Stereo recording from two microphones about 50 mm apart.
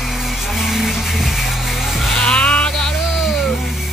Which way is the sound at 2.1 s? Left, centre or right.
Centre.